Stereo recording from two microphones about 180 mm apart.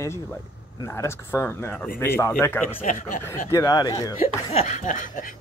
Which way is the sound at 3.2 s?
15° left (ahead or behind).